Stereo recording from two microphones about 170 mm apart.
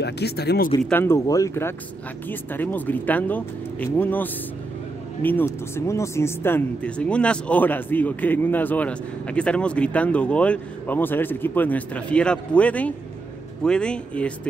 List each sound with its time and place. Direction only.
0.0 s speech: 75° left (ahead or behind)
0.8 s speech: 15° left (ahead or behind)